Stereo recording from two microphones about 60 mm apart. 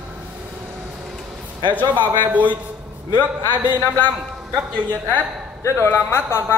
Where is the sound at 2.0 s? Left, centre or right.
Right.